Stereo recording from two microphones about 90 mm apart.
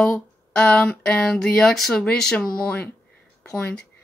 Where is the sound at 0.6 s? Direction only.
10° left (ahead or behind).